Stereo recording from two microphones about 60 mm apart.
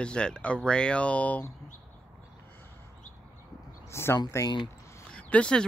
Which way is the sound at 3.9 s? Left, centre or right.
Left.